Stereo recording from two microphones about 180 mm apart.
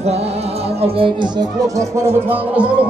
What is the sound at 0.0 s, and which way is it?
Speech, 35° right (ahead or behind).